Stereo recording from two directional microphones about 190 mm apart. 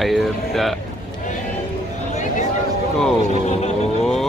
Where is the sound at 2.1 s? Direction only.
40° left (ahead or behind).